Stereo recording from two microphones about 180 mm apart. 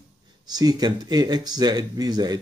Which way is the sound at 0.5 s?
20° right (ahead or behind).